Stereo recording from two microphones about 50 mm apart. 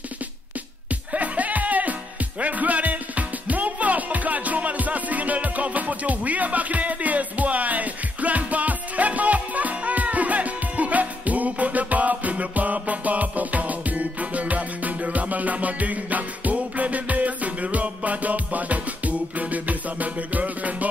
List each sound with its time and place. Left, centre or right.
1.1 s music: right